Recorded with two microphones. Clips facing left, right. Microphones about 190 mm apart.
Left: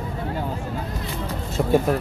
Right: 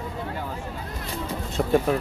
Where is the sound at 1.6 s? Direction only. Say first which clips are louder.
Left 2 dB; 5° left (ahead or behind).